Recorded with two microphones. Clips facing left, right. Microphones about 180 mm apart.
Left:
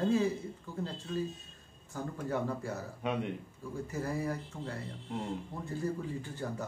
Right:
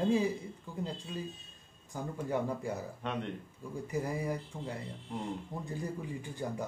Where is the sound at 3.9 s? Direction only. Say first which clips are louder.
Right 1 dB; 15° right (ahead or behind).